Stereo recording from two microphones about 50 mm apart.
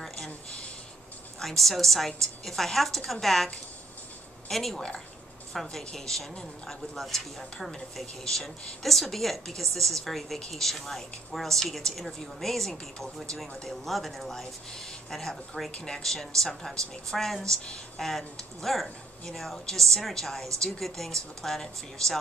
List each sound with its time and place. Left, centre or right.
0.0 s a sound: centre
1.4 s a woman's voice: centre
4.5 s a woman's voice: centre